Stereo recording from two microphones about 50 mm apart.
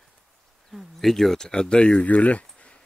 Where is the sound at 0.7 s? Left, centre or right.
Centre.